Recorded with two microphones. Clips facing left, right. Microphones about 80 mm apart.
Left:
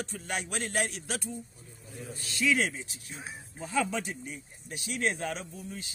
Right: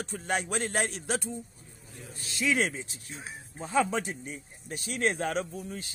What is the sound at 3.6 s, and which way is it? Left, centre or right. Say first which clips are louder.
Speech: right 3 dB; right.